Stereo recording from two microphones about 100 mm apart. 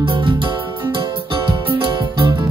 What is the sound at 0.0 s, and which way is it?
Music, 60° right (ahead or behind).